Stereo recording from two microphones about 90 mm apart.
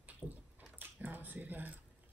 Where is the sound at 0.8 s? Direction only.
20° right (ahead or behind).